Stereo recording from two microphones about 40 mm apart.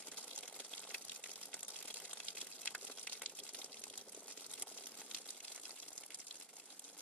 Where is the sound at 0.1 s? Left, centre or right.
Left.